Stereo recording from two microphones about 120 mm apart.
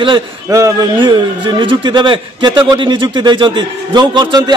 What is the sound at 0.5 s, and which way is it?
Speech, 30° right (ahead or behind).